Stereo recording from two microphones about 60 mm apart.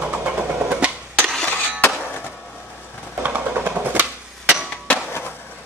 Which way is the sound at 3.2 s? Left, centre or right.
Right.